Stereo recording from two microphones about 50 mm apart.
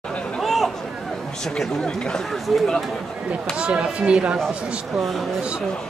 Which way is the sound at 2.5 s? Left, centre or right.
Centre.